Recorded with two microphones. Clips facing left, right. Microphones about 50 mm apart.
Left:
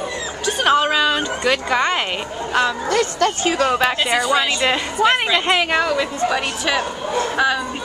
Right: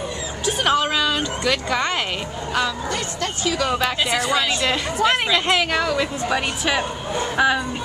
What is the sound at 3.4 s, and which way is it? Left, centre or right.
Speech, left.